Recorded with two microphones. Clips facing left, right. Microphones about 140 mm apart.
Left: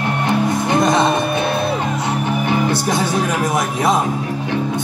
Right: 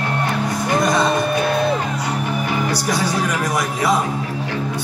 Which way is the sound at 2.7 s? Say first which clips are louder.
Left 3 dB; 25° left (ahead or behind).